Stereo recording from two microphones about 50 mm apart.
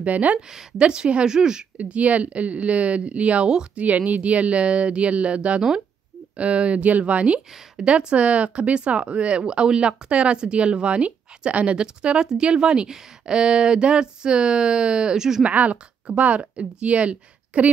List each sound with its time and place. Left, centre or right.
0.0 s speech: right
0.5 s speech: centre
1.8 s speech: right
7.3 s speech: centre
15.4 s speech: right